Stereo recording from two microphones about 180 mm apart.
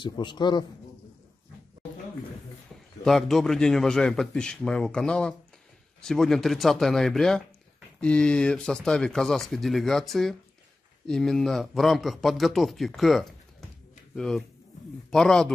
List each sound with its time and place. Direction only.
0.0 s a man's voice: 25° left (ahead or behind)
3.0 s a man's voice: centre (ahead or behind)